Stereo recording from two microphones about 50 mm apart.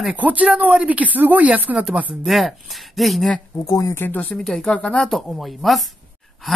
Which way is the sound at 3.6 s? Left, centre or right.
Left.